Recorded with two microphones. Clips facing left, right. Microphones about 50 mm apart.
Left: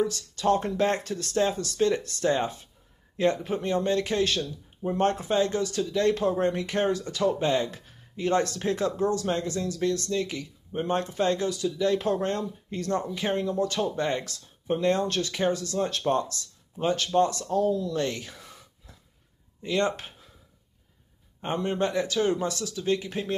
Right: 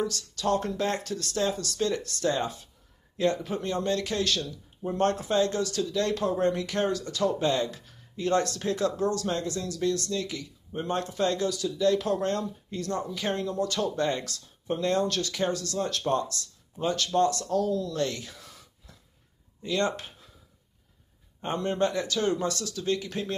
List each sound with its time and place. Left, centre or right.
0.0 s speech: left
21.4 s speech: centre